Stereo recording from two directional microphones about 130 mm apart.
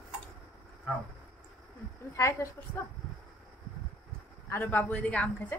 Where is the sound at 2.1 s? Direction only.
20° left (ahead or behind).